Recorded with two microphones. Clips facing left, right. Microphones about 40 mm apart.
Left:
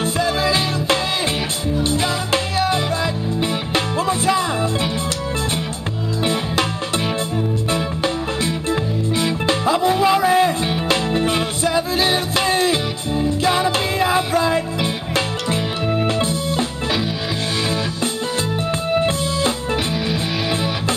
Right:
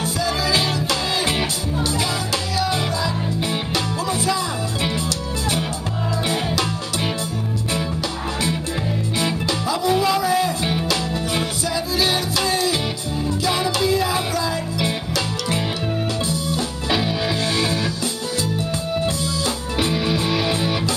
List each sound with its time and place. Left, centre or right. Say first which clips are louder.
0.0 s music: left 3 dB; left
9.5 s music: left 5 dB; left
18.9 s music: left 4 dB; left
19.9 s music: right 1 dB; centre